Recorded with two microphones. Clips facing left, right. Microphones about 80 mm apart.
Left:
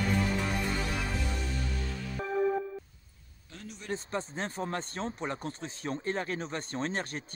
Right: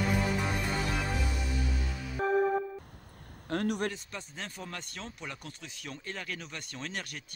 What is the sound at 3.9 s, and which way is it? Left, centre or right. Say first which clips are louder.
Speech: left 6 dB; left.